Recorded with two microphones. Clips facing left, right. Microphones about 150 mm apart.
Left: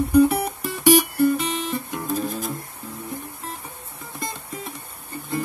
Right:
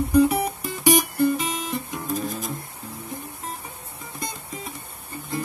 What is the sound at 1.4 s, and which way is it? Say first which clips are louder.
Guitar: left 2 dB; 40° right (ahead or behind).